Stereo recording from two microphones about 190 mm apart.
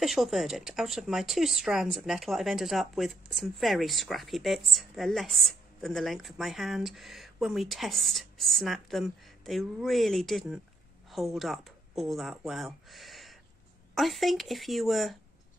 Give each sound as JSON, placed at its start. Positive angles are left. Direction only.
{"t": 0.0, "sound": "speech", "side_deg": 0}